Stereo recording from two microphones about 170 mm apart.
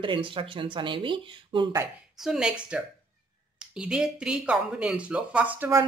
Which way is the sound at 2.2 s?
5° right (ahead or behind).